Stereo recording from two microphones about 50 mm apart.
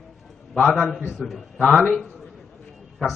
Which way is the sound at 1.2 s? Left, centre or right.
Centre.